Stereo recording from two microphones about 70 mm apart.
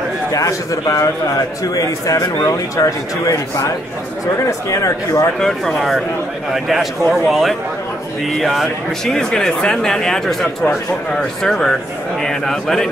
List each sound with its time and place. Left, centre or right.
0.3 s a man's voice: left
5.4 s speech: centre